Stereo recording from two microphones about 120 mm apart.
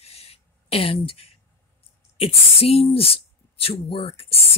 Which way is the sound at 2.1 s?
55° left (ahead or behind).